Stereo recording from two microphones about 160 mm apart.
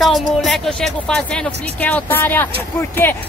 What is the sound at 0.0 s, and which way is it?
Speech, centre (ahead or behind).